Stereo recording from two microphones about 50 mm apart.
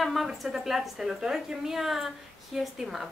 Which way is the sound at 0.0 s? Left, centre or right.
Centre.